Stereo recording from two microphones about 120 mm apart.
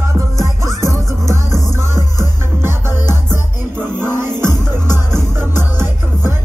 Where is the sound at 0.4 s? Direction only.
25° right (ahead or behind).